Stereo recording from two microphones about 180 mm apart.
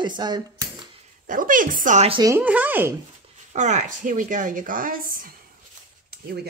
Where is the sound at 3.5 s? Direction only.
40° right (ahead or behind).